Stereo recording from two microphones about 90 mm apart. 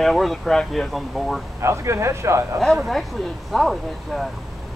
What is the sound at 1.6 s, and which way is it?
Speech, 30° right (ahead or behind).